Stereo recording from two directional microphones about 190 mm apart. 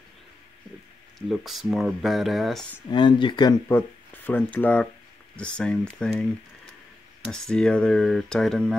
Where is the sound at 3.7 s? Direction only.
10° left (ahead or behind).